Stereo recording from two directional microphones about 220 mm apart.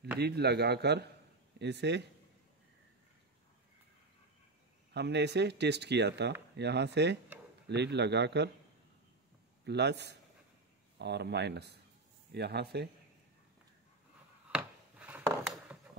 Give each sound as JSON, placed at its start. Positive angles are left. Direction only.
{"t": 0.2, "sound": "speech", "side_deg": -50}
{"t": 4.9, "sound": "speech", "side_deg": -50}
{"t": 9.7, "sound": "speech", "side_deg": -50}
{"t": 14.5, "sound": "a sound", "side_deg": -5}